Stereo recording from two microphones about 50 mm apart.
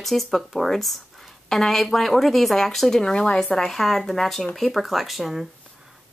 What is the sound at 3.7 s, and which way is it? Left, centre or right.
Speech, centre.